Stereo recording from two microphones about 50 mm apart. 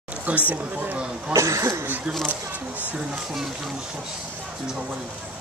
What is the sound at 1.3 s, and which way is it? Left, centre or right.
Speech, right.